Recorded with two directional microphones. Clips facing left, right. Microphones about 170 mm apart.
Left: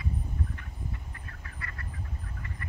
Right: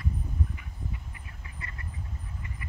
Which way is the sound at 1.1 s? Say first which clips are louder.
Left 1 dB; 20° right (ahead or behind).